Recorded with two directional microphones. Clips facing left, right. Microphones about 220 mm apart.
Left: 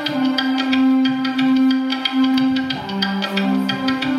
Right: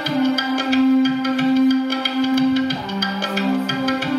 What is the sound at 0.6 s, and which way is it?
Music, 50° right (ahead or behind).